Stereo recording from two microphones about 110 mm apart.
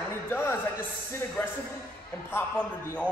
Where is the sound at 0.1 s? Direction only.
25° left (ahead or behind).